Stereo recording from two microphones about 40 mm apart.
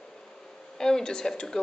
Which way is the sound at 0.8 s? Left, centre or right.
Centre.